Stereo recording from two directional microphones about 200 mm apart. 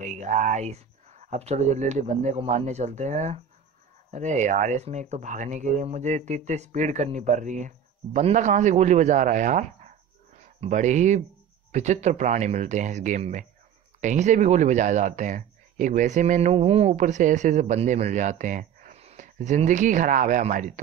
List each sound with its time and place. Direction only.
0.0 s speech: 35° right (ahead or behind)